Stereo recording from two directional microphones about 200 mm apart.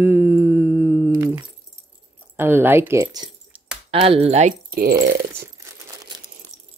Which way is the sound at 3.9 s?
30° right (ahead or behind).